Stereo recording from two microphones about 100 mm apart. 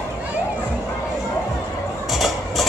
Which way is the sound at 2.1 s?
Centre (ahead or behind).